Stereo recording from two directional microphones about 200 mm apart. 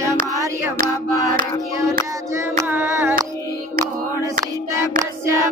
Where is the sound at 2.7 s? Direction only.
10° right (ahead or behind).